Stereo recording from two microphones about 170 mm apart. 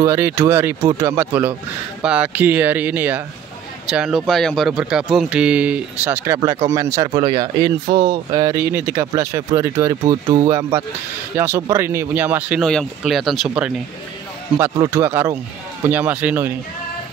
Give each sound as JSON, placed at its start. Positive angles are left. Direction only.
{"t": 0.0, "sound": "speech", "side_deg": -15}
{"t": 8.7, "sound": "speech", "side_deg": -10}
{"t": 11.3, "sound": "speech", "side_deg": -15}
{"t": 14.8, "sound": "speech", "side_deg": -15}